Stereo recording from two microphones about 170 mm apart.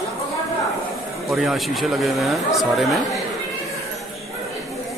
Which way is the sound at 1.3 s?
Centre (ahead or behind).